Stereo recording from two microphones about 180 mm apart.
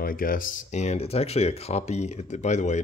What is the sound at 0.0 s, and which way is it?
Speech, 50° left (ahead or behind).